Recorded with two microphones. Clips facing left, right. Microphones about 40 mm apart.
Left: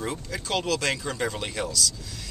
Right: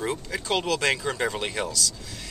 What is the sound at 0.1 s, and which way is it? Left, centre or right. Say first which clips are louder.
Speech: right 2 dB; centre.